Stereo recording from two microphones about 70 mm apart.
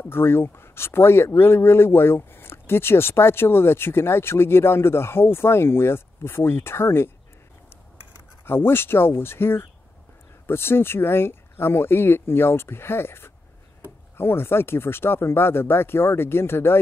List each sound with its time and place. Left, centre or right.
0.1 s speech: left
8.5 s speech: left